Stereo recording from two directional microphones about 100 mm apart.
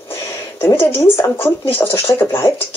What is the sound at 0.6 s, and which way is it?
Speech, 20° left (ahead or behind).